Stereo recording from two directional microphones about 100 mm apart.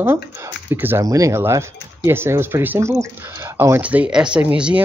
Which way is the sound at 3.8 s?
15° right (ahead or behind).